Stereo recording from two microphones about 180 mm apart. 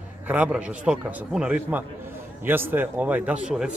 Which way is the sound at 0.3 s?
5° right (ahead or behind).